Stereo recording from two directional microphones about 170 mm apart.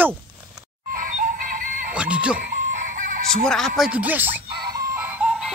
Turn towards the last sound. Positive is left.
turn(degrees=-5)  # may be behind; listen again after turning